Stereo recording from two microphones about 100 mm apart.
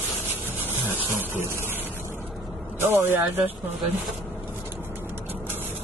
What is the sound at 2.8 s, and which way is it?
Speech, 25° right (ahead or behind).